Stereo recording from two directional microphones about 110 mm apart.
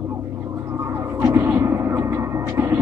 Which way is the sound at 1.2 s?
20° right (ahead or behind).